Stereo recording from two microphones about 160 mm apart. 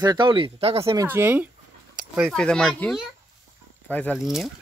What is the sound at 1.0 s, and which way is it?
Speech, 10° right (ahead or behind).